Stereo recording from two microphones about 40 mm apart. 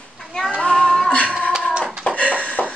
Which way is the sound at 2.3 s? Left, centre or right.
Left.